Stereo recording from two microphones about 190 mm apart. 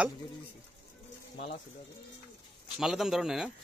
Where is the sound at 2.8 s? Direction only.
Centre (ahead or behind).